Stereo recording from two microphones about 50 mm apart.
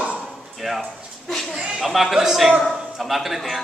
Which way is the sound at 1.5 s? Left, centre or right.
Centre.